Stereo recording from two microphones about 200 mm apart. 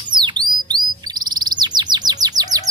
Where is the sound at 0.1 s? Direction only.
20° right (ahead or behind).